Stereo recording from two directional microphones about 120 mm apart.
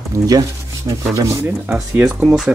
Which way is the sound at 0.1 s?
25° right (ahead or behind).